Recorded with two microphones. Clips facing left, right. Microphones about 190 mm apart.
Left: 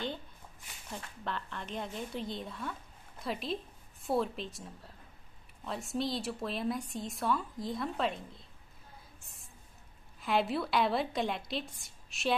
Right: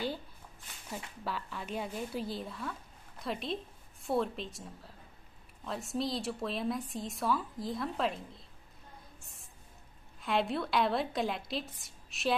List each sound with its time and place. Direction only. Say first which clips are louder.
0.8 s a woman's voice: right 1 dB; 5° right (ahead or behind)
10.2 s a woman's voice: left 1 dB; centre (ahead or behind)